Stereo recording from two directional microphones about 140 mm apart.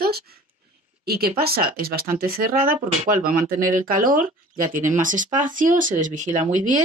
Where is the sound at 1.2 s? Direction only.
90° right.